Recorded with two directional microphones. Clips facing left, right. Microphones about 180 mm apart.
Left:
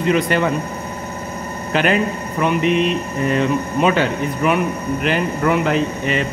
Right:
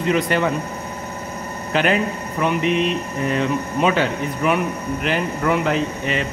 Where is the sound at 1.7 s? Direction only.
60° left (ahead or behind).